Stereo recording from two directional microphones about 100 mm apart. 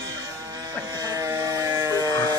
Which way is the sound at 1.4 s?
40° right (ahead or behind).